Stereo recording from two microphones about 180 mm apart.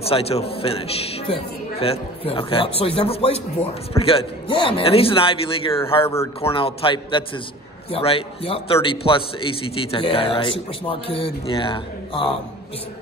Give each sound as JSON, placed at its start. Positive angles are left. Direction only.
{"t": 0.0, "sound": "a man's voice", "side_deg": 35}